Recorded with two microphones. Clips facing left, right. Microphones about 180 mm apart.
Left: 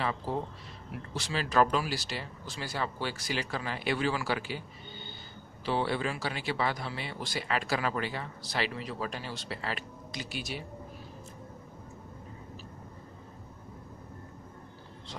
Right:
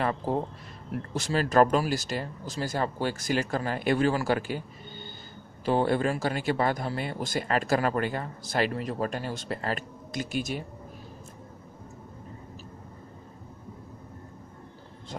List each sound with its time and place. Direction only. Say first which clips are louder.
0.0 s speech: right 5 dB; 50° right (ahead or behind)
5.7 s speech: right 6 dB; 45° right (ahead or behind)